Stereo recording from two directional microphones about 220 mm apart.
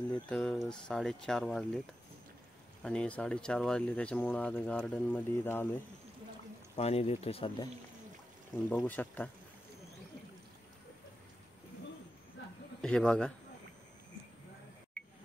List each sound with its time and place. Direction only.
0.1 s speech: 5° left (ahead or behind)
2.8 s speech: 5° left (ahead or behind)
6.8 s speech: 30° left (ahead or behind)
8.6 s speech: 10° left (ahead or behind)
12.8 s speech: 5° left (ahead or behind)
15.0 s a sound: 5° left (ahead or behind)